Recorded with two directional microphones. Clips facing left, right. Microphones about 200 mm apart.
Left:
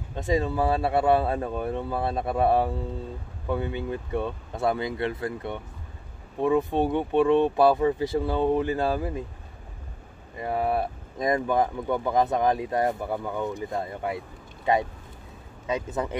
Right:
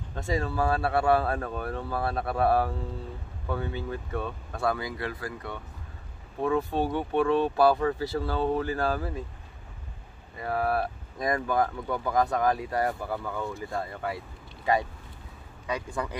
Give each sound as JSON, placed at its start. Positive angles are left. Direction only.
{"t": 0.1, "sound": "speech", "side_deg": 20}
{"t": 10.4, "sound": "speech", "side_deg": 20}